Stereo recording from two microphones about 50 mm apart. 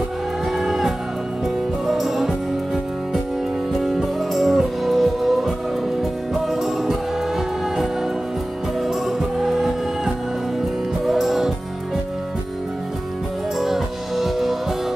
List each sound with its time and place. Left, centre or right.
0.6 s music: centre
6.5 s music: centre
9.4 s music: centre
13.6 s music: centre